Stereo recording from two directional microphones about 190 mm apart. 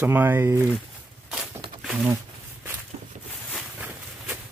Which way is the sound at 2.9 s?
30° right (ahead or behind).